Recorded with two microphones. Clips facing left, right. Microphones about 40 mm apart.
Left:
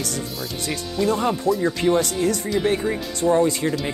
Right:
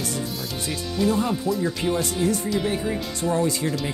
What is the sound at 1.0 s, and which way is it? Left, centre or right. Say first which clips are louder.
Speech: left 1 dB; centre.